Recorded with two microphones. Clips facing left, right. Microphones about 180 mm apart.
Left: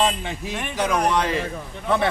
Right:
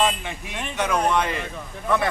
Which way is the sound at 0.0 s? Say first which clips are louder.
Left 1 dB; 30° left (ahead or behind).